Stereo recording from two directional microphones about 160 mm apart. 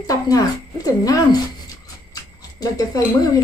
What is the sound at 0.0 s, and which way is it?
Speech, 20° left (ahead or behind).